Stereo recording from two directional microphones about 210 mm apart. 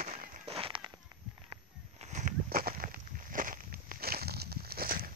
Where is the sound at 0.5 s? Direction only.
25° right (ahead or behind); by 5.1 s 45° right (ahead or behind).